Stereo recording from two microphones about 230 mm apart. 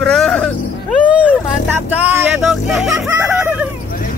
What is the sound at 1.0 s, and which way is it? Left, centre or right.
Music, centre.